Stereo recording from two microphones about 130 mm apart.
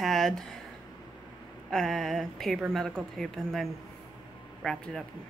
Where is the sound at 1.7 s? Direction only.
Centre (ahead or behind).